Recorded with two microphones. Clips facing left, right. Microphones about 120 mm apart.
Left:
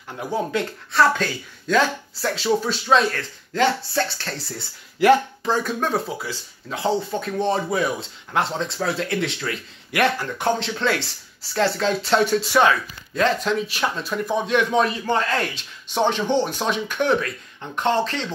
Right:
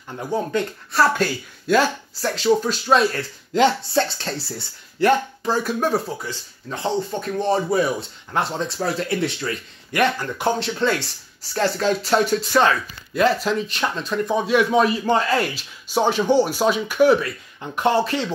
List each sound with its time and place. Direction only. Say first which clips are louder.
0.3 s speech: right 1 dB; centre (ahead or behind)
3.5 s speech: right 3 dB; 20° right (ahead or behind)
5.0 s speech: left 2 dB; 5° right (ahead or behind)